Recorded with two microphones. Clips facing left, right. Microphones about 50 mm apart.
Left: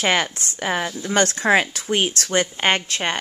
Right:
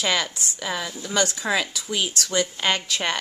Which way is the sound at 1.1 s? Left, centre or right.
Left.